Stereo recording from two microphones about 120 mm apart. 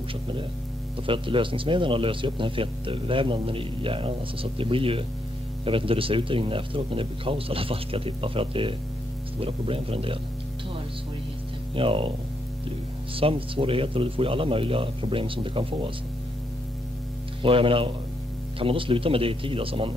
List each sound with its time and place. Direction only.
1.0 s speech: 45° right (ahead or behind)
11.7 s speech: 50° right (ahead or behind)
13.1 s speech: 50° right (ahead or behind)
17.4 s speech: 45° right (ahead or behind)